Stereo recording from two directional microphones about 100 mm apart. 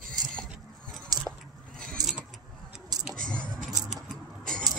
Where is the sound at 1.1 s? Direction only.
40° right (ahead or behind).